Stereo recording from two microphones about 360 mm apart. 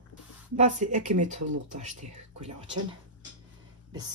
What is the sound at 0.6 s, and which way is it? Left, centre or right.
Speech, centre.